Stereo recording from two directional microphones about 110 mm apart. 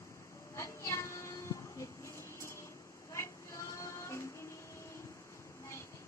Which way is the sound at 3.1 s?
25° left (ahead or behind).